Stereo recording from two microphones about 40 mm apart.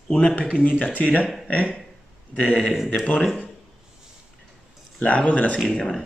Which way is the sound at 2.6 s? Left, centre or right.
Centre.